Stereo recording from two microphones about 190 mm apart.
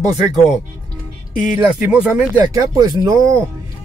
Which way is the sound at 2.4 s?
20° right (ahead or behind).